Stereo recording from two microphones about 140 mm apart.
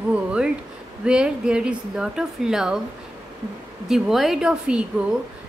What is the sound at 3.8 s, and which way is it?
A woman's voice, 5° right (ahead or behind).